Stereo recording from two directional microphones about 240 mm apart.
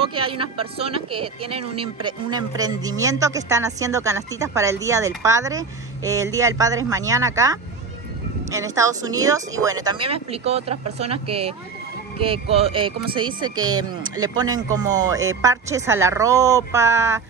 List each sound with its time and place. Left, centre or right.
0.1 s speech: right